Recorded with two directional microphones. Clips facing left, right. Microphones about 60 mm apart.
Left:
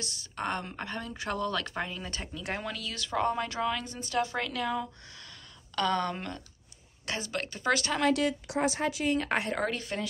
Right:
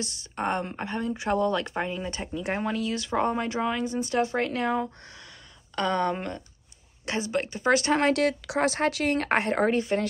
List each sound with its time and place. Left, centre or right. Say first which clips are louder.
0.0 s speech: right 5 dB; right
5.8 s speech: right 3 dB; right
8.1 s speech: right 4 dB; right